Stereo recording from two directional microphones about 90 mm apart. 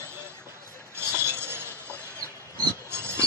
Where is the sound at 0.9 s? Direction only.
25° right (ahead or behind).